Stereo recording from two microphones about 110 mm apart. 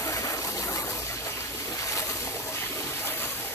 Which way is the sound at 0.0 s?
30° left (ahead or behind).